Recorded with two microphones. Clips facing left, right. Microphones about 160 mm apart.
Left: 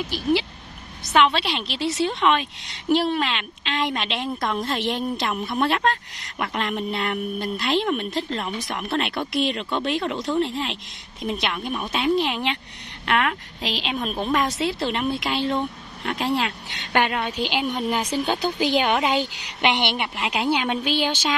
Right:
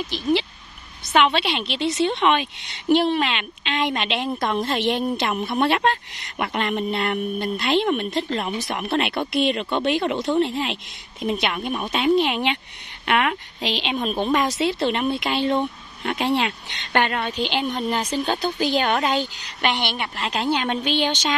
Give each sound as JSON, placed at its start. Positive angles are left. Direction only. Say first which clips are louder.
{"t": 1.0, "sound": "a woman's voice", "louder": "even", "side_deg": 0}